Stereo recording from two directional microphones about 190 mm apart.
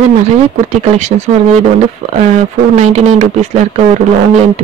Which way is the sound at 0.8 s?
35° right (ahead or behind).